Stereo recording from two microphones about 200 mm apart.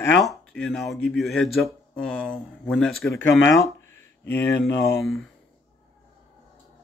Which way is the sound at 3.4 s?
10° left (ahead or behind).